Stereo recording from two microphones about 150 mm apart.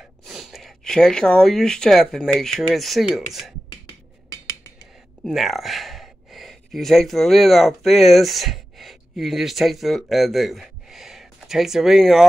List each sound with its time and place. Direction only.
0.2 s speech: centre (ahead or behind)
4.3 s a sound: 25° left (ahead or behind)
5.2 s speech: centre (ahead or behind)